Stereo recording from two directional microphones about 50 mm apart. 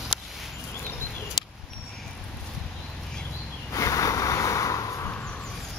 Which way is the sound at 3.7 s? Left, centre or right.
Left.